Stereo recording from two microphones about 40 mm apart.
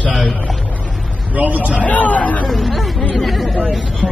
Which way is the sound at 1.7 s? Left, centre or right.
Left.